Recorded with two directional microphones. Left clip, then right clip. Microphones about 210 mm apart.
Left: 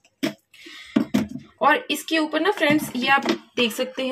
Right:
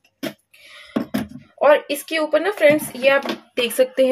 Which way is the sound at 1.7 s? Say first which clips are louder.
Right 4 dB; 10° right (ahead or behind).